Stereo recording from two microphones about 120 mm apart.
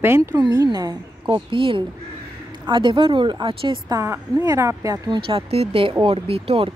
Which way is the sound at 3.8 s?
25° right (ahead or behind).